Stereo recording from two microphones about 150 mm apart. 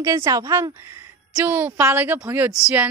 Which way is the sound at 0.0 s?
20° right (ahead or behind).